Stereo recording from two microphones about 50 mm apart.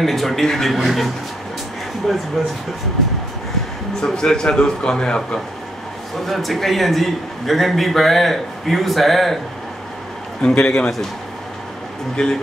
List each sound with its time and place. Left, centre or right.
0.0 s a man's voice: centre
4.0 s a man's voice: centre
6.2 s a man's voice: centre
10.4 s a man's voice: centre
12.2 s a man's voice: centre